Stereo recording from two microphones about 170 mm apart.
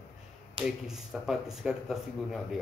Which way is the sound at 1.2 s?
Centre (ahead or behind).